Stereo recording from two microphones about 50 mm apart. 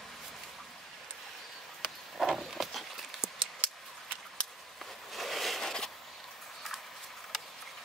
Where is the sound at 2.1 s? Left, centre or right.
Centre.